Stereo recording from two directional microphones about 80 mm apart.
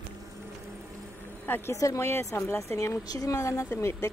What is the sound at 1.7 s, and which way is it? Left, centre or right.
Speech, left.